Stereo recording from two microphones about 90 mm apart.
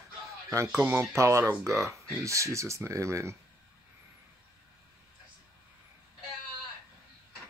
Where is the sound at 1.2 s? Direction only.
35° right (ahead or behind).